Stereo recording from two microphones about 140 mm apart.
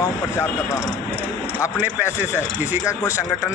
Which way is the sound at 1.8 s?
15° right (ahead or behind).